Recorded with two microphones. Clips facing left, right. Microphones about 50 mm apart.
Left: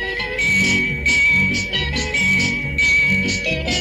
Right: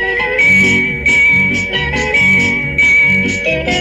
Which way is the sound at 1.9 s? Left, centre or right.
Right.